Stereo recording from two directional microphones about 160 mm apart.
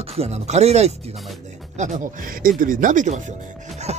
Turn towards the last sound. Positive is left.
turn(degrees=-40)  # may be behind; listen again after turning